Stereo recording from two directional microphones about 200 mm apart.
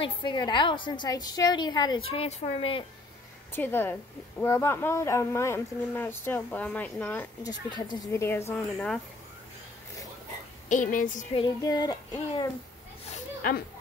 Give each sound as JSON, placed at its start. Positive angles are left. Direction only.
{"t": 0.0, "sound": "a woman's voice", "side_deg": 25}
{"t": 3.5, "sound": "a woman's voice", "side_deg": 10}
{"t": 7.7, "sound": "a woman's voice", "side_deg": 20}
{"t": 10.7, "sound": "a woman's voice", "side_deg": 40}
{"t": 11.3, "sound": "a woman's voice", "side_deg": 20}
{"t": 13.1, "sound": "a sound", "side_deg": 45}